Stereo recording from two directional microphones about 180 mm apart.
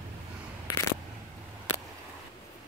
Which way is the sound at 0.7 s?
20° left (ahead or behind).